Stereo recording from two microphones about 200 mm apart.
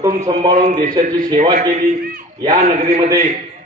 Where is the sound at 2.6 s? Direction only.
30° right (ahead or behind).